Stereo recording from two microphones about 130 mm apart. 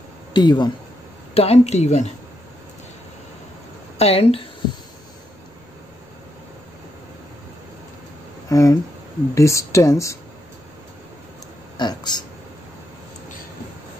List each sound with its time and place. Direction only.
0.3 s speech: 35° left (ahead or behind)
1.3 s speech: 50° left (ahead or behind)
4.0 s speech: 50° left (ahead or behind)
8.5 s speech: 25° left (ahead or behind)
11.7 s speech: 35° left (ahead or behind)